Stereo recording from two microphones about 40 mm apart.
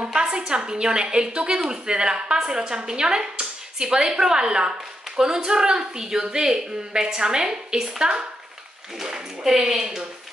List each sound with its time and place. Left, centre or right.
0.1 s speech: centre
9.4 s a woman's voice: centre